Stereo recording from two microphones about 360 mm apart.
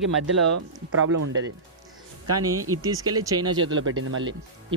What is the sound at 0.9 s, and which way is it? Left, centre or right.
Speech, right.